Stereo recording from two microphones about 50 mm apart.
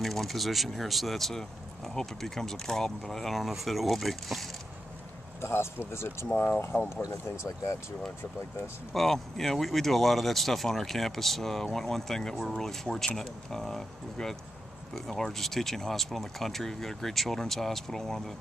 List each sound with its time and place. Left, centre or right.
0.0 s speech: centre
5.4 s speech: left
6.3 s speech: left
6.8 s speech: left
8.9 s speech: centre